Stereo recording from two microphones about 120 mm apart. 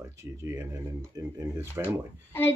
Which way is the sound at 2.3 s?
20° left (ahead or behind).